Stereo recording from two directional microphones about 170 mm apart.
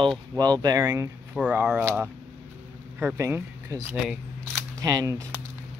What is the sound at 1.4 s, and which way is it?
Speech, 5° right (ahead or behind).